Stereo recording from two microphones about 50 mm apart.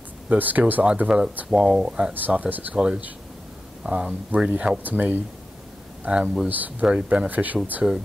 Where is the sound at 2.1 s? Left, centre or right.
Right.